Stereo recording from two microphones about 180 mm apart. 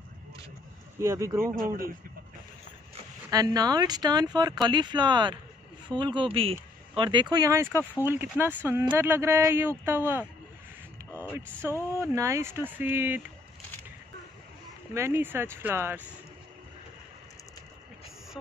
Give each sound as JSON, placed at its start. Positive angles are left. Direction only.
{"t": 0.9, "sound": "speech", "side_deg": -15}
{"t": 3.3, "sound": "speech", "side_deg": -20}
{"t": 12.0, "sound": "speech", "side_deg": -15}
{"t": 15.0, "sound": "speech", "side_deg": -15}